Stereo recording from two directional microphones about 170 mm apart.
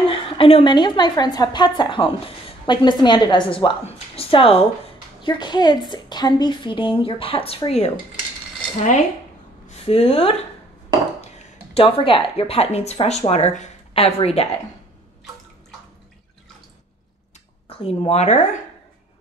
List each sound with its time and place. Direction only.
0.1 s a woman's voice: 30° left (ahead or behind)
9.8 s a woman's voice: 35° left (ahead or behind)
17.6 s speech: 35° left (ahead or behind)